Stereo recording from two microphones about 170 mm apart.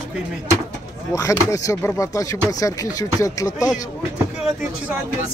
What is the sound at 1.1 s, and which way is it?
Speech, 20° left (ahead or behind).